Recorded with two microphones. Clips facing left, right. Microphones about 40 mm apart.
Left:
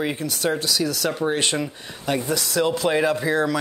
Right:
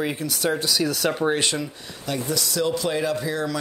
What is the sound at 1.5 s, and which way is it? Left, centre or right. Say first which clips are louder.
Speech: left 3 dB; left.